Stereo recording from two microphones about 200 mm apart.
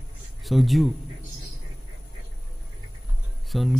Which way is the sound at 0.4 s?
Centre (ahead or behind).